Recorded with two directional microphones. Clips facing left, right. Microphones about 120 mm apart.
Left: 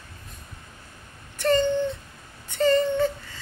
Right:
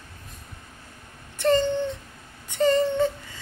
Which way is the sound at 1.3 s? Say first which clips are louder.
Right 1 dB; 20° right (ahead or behind).